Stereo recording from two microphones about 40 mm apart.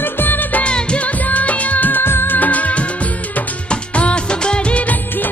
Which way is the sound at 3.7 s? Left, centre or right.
Left.